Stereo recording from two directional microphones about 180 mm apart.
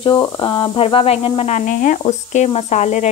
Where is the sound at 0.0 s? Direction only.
25° left (ahead or behind).